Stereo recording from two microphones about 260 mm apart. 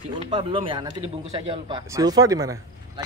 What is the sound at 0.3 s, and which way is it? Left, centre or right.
Speech, centre.